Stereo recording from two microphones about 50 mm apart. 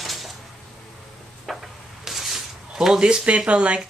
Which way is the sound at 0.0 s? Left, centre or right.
Centre.